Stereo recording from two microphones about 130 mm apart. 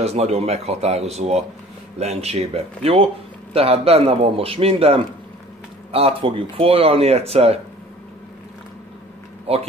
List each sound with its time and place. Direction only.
0.0 s a man's voice: 55° right (ahead or behind)
9.5 s speech: 50° right (ahead or behind)